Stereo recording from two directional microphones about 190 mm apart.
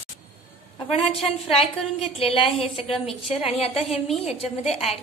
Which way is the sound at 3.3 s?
30° left (ahead or behind).